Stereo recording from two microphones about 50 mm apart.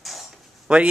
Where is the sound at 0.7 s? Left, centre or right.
Centre.